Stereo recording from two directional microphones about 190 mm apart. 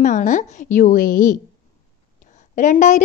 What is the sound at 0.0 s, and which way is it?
A woman's voice, 40° left (ahead or behind).